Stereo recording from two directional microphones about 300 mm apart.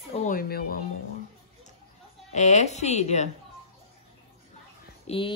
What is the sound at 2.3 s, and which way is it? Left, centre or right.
Speech, left.